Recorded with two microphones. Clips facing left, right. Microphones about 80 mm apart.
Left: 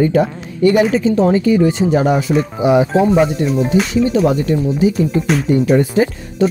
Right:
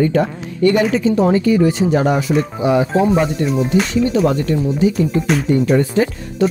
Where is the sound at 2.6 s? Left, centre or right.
Centre.